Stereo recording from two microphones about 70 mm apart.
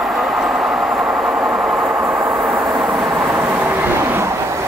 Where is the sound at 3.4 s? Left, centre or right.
Right.